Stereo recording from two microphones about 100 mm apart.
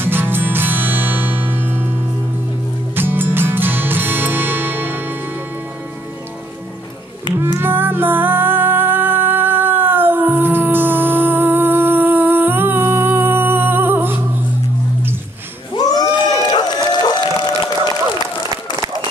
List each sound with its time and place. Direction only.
0.0 s music: 20° right (ahead or behind)
3.0 s music: 20° right (ahead or behind)
7.3 s music: 20° right (ahead or behind)
15.7 s music: 40° left (ahead or behind)